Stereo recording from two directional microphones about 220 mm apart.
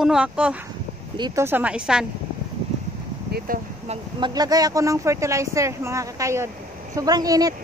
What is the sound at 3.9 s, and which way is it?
Speech, 20° right (ahead or behind).